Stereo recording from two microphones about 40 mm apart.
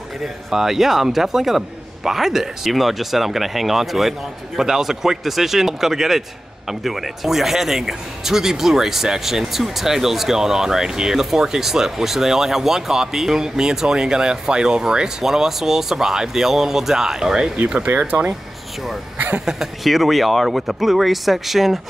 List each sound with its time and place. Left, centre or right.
0.2 s speech: centre
17.8 s speech: right
19.4 s speech: centre